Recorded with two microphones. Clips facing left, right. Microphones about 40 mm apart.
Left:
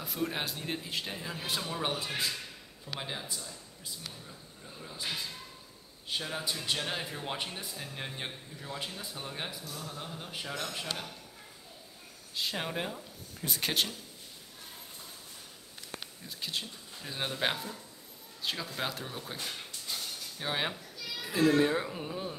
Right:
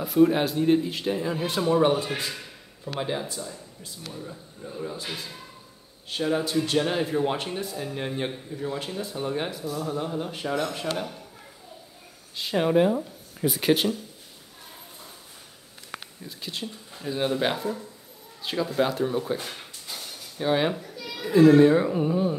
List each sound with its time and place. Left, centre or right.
0.0 s speech: centre
4.1 s speech: right
4.9 s speech: centre
12.4 s speech: centre
16.3 s speech: centre
18.8 s a sound: centre
20.4 s speech: centre
20.7 s children playing: right
21.3 s speech: centre